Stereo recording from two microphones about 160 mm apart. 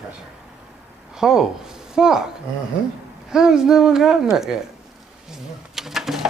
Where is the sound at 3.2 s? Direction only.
5° right (ahead or behind).